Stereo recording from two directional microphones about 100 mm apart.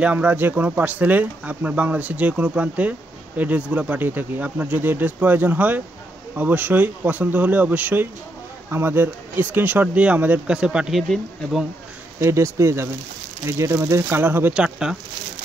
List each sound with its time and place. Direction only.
0.0 s speech: 15° right (ahead or behind)
12.2 s speech: 25° right (ahead or behind)
14.5 s speech: 10° right (ahead or behind)